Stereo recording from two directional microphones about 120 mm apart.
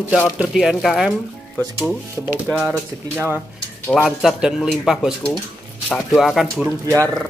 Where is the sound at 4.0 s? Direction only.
5° right (ahead or behind).